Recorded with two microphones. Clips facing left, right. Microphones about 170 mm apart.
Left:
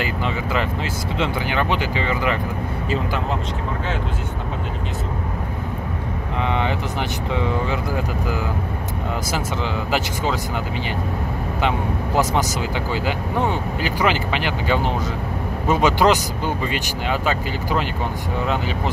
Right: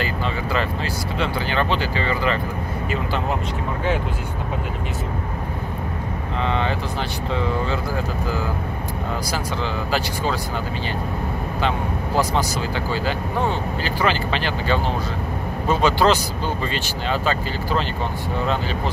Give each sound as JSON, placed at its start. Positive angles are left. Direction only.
{"t": 0.0, "sound": "speech", "side_deg": 15}
{"t": 12.9, "sound": "speech", "side_deg": 15}